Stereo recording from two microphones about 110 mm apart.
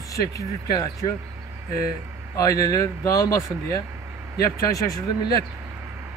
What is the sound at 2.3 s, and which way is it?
Speech, 30° left (ahead or behind).